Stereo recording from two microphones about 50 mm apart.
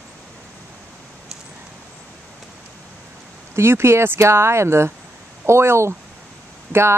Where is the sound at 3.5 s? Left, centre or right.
Right.